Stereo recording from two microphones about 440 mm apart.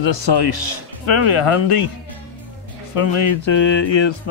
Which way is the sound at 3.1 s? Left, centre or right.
Left.